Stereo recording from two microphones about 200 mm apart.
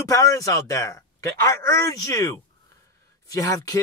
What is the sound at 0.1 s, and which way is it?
Speech, 15° left (ahead or behind).